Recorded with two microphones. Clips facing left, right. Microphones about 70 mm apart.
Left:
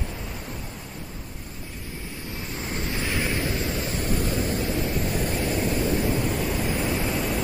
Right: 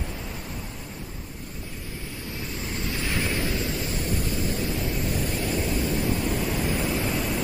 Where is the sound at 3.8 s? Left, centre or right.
Left.